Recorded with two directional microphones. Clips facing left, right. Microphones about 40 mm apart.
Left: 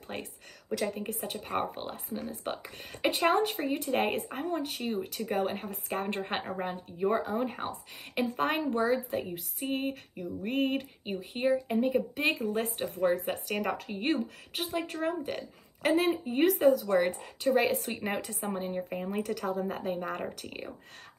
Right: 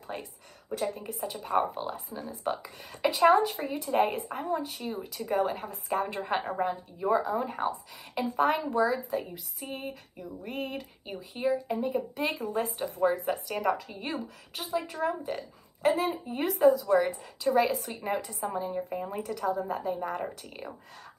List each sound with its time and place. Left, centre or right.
0.1 s speech: left
7.6 s speech: left
8.1 s speech: left
20.4 s speech: left